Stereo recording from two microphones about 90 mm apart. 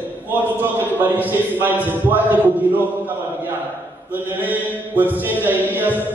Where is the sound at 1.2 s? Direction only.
20° right (ahead or behind).